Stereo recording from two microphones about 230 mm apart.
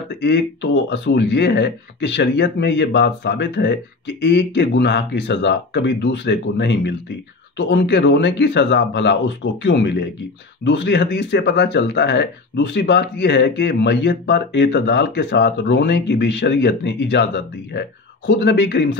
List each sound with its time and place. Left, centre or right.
0.1 s speech: left